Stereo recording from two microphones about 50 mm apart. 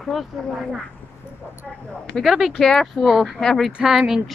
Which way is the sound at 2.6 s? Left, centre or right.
Centre.